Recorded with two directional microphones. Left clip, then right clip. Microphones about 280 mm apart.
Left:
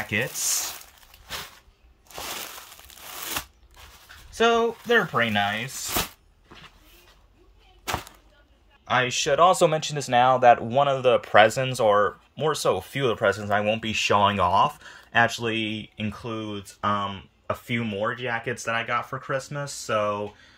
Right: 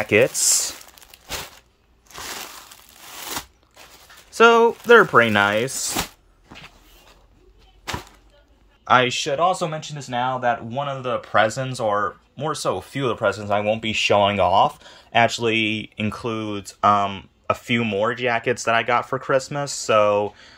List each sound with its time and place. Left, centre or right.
0.0 s speech: centre
4.3 s speech: centre
8.8 s speech: centre
9.1 s speech: centre